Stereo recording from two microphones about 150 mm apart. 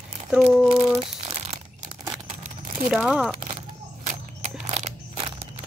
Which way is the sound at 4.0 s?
50° right (ahead or behind).